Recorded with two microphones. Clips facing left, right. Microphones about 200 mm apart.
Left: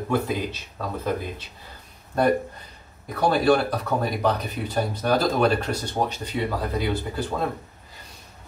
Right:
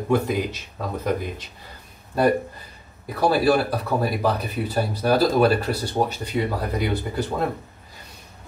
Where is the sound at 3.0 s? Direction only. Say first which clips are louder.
Right 1 dB; 5° right (ahead or behind).